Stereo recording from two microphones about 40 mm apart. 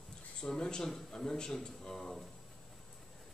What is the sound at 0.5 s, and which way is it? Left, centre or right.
Speech, centre.